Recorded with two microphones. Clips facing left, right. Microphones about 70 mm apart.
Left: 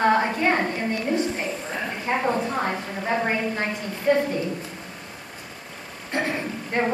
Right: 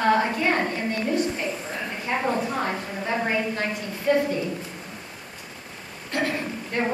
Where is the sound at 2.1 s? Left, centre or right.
Centre.